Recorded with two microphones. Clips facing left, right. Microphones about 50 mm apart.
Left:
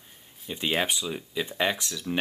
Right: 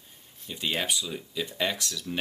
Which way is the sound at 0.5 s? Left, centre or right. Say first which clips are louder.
Left 3 dB; left.